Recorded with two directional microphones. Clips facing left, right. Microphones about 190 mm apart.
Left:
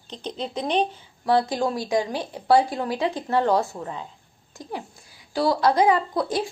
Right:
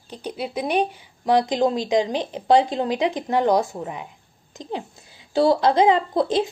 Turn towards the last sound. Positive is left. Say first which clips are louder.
# right 4 dB
turn(degrees=-20)  # may be behind; listen again after turning